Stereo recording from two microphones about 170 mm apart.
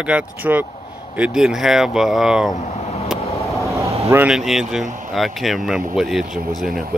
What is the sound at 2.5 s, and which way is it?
Vehicle, 40° left (ahead or behind).